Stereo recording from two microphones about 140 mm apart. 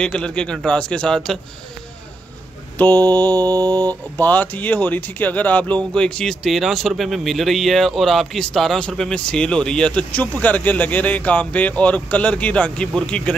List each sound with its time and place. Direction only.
0.0 s speech: 5° left (ahead or behind)
3.0 s mantra: 25° right (ahead or behind)
4.2 s speech: 10° left (ahead or behind)